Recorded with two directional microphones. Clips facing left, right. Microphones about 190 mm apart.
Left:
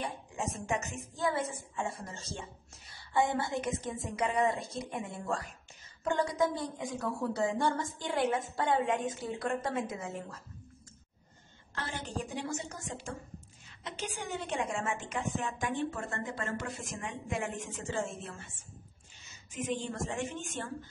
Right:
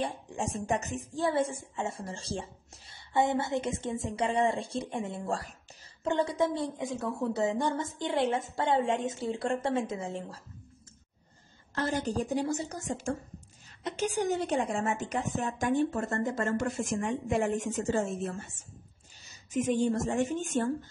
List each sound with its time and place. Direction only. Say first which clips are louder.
0.0 s a woman's voice: right 4 dB; 30° right (ahead or behind)
6.0 s a woman's voice: right 2 dB; 25° right (ahead or behind)
11.7 s a woman's voice: right 8 dB; 40° right (ahead or behind)